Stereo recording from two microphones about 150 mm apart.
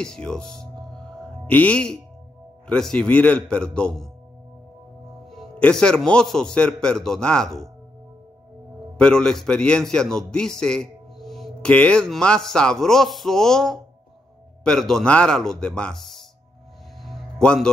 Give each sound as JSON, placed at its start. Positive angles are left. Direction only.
{"t": 0.0, "sound": "music", "side_deg": 5}
{"t": 2.6, "sound": "a man's voice", "side_deg": 5}
{"t": 5.3, "sound": "a man's voice", "side_deg": 5}
{"t": 8.9, "sound": "a man's voice", "side_deg": 5}
{"t": 17.0, "sound": "music", "side_deg": 5}